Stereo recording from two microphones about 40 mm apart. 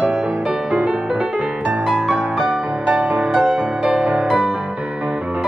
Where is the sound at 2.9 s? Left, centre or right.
Right.